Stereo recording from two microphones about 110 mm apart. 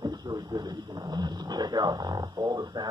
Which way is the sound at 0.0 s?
35° right (ahead or behind).